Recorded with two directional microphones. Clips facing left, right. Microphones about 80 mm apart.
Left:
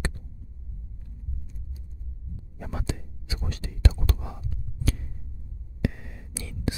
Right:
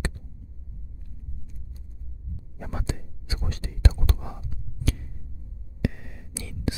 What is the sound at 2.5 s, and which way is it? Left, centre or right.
Whispering, right.